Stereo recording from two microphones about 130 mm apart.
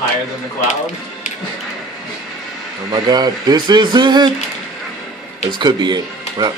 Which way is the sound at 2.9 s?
30° right (ahead or behind).